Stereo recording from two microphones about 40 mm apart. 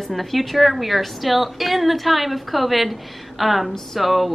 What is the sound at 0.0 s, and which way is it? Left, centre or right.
A woman's voice, centre.